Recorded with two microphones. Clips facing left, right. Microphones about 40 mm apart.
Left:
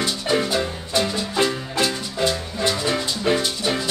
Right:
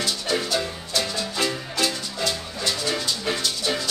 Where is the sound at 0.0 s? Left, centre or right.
Centre.